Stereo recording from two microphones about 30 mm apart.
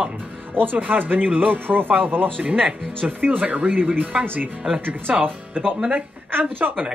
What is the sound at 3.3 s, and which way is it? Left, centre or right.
Speech, right.